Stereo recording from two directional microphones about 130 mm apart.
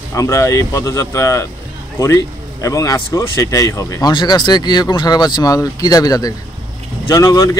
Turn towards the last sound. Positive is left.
turn(degrees=25)  # may be behind; listen again after turning